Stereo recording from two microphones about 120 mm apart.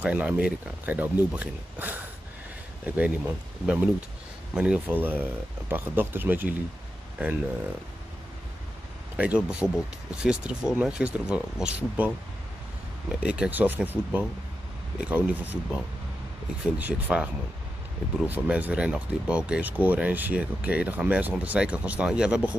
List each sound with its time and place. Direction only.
0.0 s speech: 15° right (ahead or behind)
9.1 s speech: 10° right (ahead or behind)
13.1 s speech: 10° right (ahead or behind)
16.6 s speech: 10° right (ahead or behind)